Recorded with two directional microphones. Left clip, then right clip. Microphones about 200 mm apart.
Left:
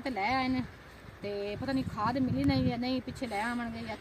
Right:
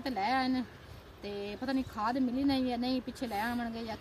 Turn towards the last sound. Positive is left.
turn(degrees=-5)  # may be behind; listen again after turning